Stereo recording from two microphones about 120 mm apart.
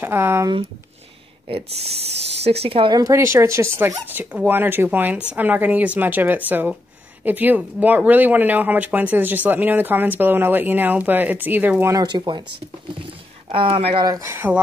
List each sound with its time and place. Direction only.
0.0 s speech: 20° right (ahead or behind)
1.5 s speech: 55° right (ahead or behind)
2.9 s speech: 25° right (ahead or behind)
11.9 s speech: 35° right (ahead or behind)
13.5 s speech: 50° right (ahead or behind)
14.0 s speech: 25° right (ahead or behind)